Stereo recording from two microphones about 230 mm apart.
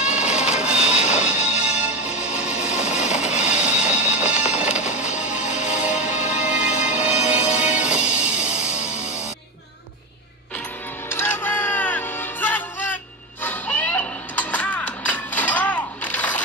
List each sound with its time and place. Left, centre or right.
0.0 s music: centre
5.9 s music: left
6.4 s music: centre
6.7 s music: left
7.0 s music: centre
11.1 s music: centre